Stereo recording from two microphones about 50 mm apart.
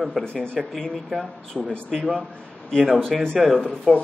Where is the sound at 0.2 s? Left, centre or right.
Centre.